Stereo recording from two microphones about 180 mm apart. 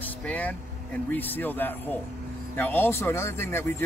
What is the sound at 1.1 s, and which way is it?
Speech, 10° left (ahead or behind).